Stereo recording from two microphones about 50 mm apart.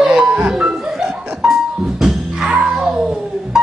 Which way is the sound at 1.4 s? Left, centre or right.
Centre.